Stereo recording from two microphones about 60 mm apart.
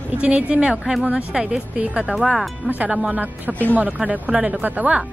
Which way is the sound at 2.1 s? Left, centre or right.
Centre.